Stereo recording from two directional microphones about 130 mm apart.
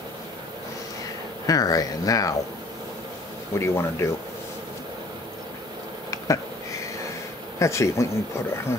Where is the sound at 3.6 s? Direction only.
20° left (ahead or behind).